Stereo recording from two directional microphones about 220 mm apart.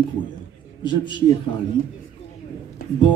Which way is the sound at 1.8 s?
40° left (ahead or behind).